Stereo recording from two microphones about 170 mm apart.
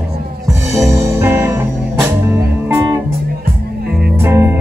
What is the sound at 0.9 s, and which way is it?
Music, 15° right (ahead or behind).